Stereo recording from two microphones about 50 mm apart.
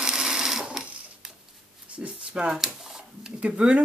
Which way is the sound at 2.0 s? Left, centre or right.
Centre.